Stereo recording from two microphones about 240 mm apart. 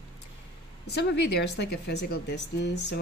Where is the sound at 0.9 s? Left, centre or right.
Left.